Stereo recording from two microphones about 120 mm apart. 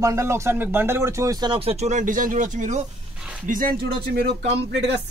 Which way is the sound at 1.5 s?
55° right (ahead or behind).